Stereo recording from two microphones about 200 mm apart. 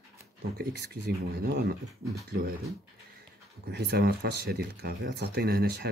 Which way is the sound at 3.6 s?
55° right (ahead or behind).